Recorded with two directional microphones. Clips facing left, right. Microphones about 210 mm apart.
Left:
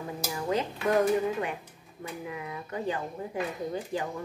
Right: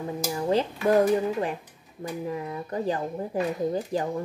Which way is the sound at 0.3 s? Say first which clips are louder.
Right 5 dB; 35° right (ahead or behind).